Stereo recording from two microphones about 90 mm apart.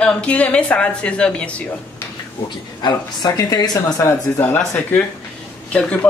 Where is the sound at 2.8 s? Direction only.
55° left (ahead or behind).